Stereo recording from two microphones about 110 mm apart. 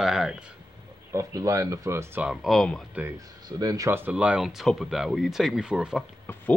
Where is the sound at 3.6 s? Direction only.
35° right (ahead or behind).